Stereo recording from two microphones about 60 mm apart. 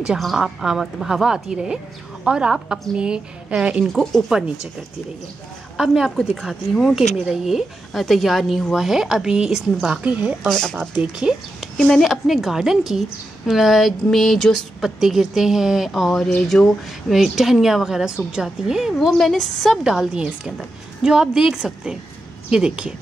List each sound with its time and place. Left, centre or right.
0.4 s a woman's voice: centre
3.8 s a woman's voice: centre
4.3 s a woman's voice: centre
5.8 s a woman's voice: centre
10.4 s speech: centre
11.0 s speech: centre
11.7 s a woman's voice: centre
14.8 s a woman's voice: centre
18.9 s a woman's voice: centre
20.2 s a woman's voice: centre